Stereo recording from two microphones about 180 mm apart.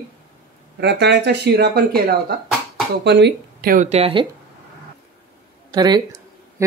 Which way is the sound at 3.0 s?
70° right (ahead or behind).